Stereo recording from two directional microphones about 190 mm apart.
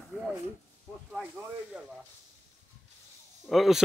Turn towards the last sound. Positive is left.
turn(degrees=0)  # may be behind; listen again after turning